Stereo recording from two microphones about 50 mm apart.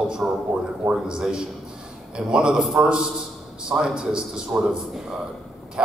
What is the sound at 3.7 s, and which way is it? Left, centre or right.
A man's voice, centre.